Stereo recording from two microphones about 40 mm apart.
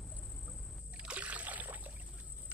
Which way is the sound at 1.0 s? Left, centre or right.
Right.